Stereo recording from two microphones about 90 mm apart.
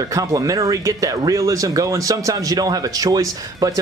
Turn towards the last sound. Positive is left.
turn(degrees=-40)  # may be behind; listen again after turning